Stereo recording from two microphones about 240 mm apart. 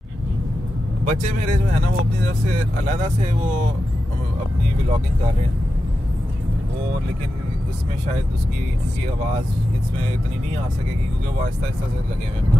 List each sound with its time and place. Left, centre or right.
1.0 s speech: right
2.8 s speech: right